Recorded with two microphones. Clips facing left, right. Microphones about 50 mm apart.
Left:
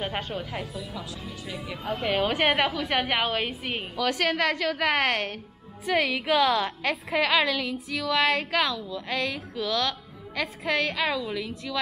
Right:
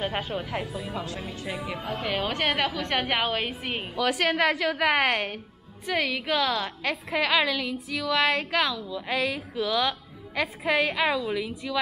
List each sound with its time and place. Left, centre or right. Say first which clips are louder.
0.0 s speech: right 1 dB; centre
0.7 s speech: right 3 dB; right
1.0 s speech: right 4 dB; right
1.5 s speech: right 3 dB; centre
1.9 s a woman's voice: left 4 dB; centre